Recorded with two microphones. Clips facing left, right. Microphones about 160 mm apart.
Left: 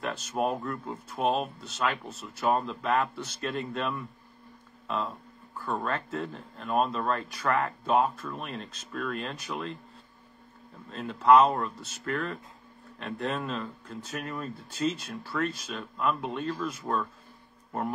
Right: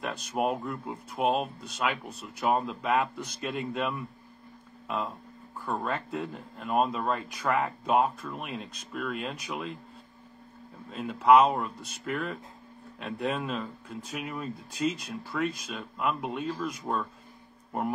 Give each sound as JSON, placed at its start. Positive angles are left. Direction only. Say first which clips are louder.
{"t": 0.3, "sound": "speech", "louder": "right 1 dB", "side_deg": -10}
{"t": 10.9, "sound": "speech", "louder": "even", "side_deg": -10}